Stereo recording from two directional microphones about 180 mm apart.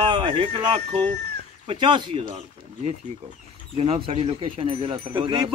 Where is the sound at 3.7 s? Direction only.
30° right (ahead or behind).